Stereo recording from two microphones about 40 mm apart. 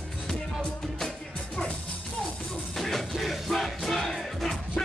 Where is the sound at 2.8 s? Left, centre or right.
Centre.